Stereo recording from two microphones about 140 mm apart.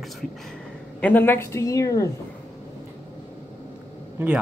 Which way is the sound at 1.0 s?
15° left (ahead or behind).